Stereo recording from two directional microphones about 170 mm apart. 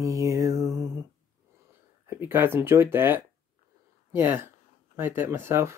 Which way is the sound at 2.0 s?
15° right (ahead or behind).